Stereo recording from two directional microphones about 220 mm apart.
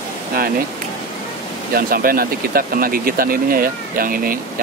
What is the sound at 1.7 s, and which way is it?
Speech, 40° right (ahead or behind).